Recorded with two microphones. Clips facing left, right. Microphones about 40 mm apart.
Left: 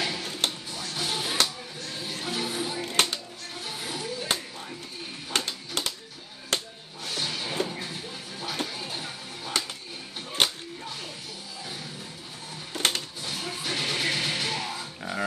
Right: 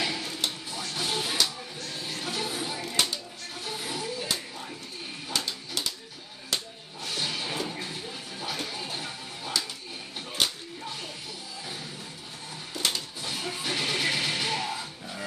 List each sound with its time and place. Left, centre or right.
0.0 s music: centre
5.3 s music: left
6.5 s a sound: left
7.1 s music: centre
10.4 s a sound: left
12.7 s printer: left
13.2 s music: centre